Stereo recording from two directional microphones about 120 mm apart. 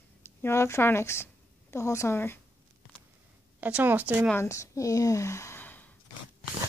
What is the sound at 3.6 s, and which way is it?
Speech, 15° right (ahead or behind).